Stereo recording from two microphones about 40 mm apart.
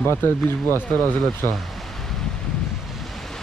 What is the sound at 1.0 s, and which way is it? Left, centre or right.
Speech, left.